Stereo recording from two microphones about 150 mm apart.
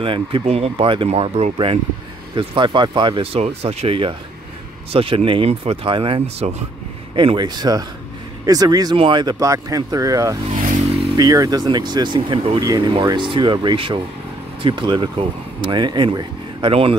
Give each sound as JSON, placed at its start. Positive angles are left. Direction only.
{"t": 0.0, "sound": "speech", "side_deg": -35}
{"t": 10.7, "sound": "vehicle", "side_deg": -50}
{"t": 11.1, "sound": "speech", "side_deg": -25}